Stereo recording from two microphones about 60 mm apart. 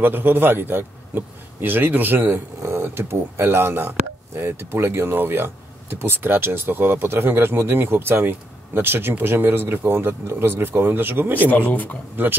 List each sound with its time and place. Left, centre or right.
0.0 s speech: right
11.5 s speech: left